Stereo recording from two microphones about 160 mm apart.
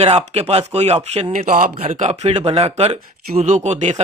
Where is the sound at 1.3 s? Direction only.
55° right (ahead or behind).